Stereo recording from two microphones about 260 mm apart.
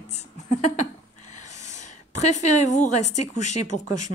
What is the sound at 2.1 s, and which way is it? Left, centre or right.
Speech, left.